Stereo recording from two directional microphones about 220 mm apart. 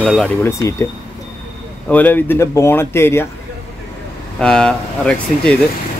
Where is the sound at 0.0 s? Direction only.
Centre (ahead or behind).